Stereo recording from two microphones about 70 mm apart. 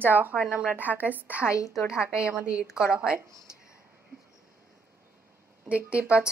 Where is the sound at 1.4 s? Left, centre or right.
Left.